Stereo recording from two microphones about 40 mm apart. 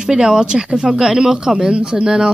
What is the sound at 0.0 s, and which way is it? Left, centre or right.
Speech, centre.